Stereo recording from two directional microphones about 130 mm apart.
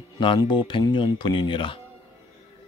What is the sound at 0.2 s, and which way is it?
Speech, 40° left (ahead or behind).